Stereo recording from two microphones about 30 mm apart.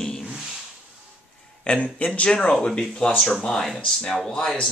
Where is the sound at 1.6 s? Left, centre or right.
Left.